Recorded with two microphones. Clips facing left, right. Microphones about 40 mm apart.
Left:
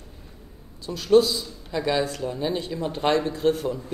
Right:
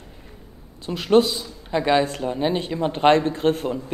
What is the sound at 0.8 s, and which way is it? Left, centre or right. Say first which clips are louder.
A man's voice: right 1 dB; right.